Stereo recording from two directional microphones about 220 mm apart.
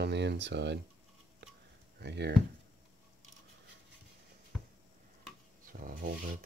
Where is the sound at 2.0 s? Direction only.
50° right (ahead or behind).